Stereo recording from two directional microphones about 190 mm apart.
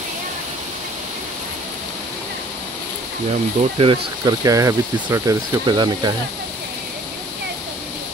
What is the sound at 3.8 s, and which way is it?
Speech, 25° right (ahead or behind).